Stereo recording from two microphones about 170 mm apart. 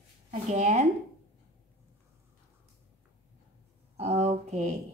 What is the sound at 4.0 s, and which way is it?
Speech, 35° right (ahead or behind).